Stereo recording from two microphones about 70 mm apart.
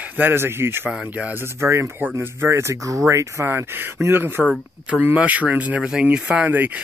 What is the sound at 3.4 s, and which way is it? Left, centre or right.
Speech, right.